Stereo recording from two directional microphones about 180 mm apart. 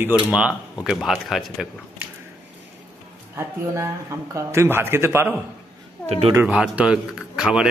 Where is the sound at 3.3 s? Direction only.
15° right (ahead or behind).